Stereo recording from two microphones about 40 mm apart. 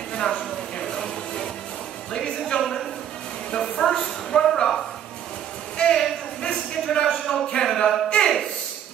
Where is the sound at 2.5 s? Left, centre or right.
Centre.